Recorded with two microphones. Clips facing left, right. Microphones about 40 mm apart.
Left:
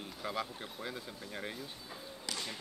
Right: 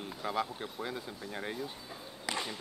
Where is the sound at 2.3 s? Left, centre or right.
Right.